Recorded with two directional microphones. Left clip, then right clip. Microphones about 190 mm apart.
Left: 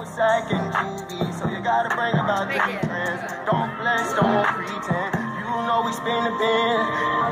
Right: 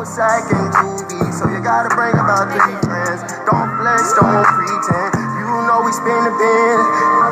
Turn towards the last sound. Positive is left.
turn(degrees=-30)  # may be behind; listen again after turning